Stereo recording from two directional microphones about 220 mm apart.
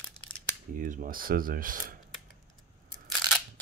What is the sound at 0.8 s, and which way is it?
Speech, 35° right (ahead or behind).